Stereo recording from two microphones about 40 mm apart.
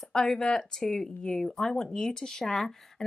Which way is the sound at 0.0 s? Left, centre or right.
Centre.